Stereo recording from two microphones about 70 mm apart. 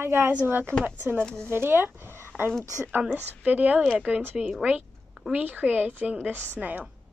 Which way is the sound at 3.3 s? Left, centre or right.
Right.